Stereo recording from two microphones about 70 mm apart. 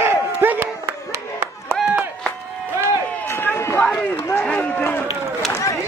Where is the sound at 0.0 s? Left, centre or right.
Right.